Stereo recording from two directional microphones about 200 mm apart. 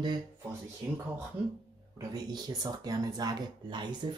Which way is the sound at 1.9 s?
20° right (ahead or behind).